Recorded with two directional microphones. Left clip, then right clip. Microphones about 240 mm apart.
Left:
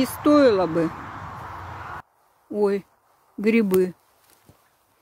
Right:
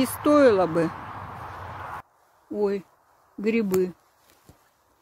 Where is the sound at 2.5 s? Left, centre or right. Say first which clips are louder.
Left 4 dB; left.